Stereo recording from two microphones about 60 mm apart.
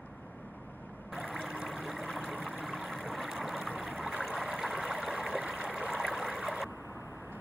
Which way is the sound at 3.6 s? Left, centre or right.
Right.